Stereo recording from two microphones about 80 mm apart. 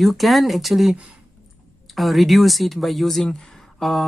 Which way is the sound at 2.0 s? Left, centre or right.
Centre.